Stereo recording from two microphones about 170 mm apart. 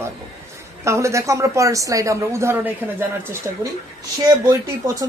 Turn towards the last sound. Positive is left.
turn(degrees=-20)  # may be behind; listen again after turning